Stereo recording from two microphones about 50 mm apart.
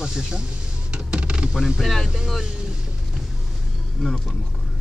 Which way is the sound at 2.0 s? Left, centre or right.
Centre.